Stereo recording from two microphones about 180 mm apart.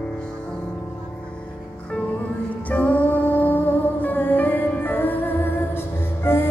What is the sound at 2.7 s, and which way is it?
Music, 10° left (ahead or behind).